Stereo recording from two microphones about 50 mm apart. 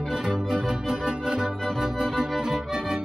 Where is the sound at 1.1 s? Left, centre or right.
Centre.